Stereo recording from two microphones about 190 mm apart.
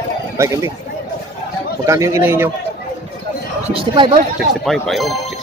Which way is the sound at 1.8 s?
15° right (ahead or behind).